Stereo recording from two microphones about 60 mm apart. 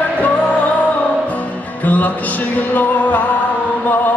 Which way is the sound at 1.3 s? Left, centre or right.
Left.